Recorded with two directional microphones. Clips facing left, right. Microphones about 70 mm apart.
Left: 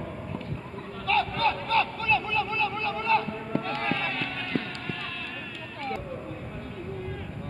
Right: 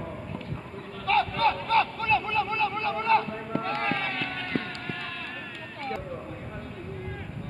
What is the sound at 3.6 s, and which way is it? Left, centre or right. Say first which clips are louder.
Run: right 1 dB; right.